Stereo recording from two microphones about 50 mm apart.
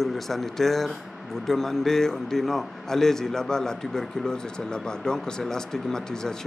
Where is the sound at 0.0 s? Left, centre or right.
Centre.